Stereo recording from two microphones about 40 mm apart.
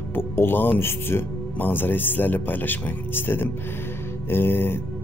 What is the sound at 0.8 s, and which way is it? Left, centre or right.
Speech, left.